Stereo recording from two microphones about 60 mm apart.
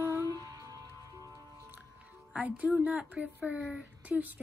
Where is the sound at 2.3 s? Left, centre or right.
Right.